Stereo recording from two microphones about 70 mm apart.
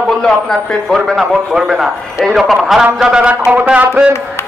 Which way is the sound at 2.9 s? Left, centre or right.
Centre.